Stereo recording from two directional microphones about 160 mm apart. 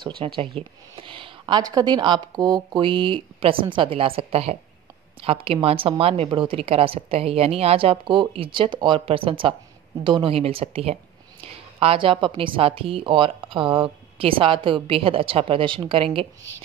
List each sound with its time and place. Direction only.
0.0 s a woman's voice: 30° right (ahead or behind)